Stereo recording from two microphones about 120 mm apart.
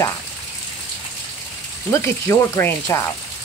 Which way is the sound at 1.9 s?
20° left (ahead or behind).